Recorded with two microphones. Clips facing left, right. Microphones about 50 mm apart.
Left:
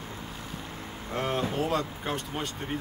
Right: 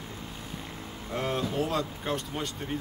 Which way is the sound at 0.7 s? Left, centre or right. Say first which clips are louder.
Left 1 dB; left.